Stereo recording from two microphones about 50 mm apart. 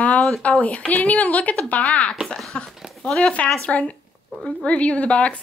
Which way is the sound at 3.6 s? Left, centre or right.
Left.